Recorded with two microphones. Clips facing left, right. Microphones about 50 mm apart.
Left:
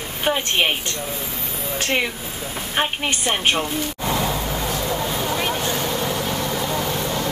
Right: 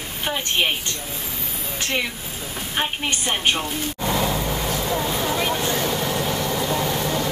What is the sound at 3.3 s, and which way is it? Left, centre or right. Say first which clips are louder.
Speech: left 2 dB; centre.